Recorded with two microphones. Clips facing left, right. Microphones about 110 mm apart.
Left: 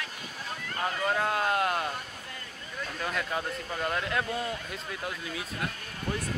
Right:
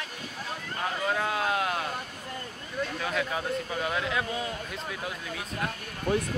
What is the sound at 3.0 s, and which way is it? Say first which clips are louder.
Speech: left 1 dB; centre (ahead or behind).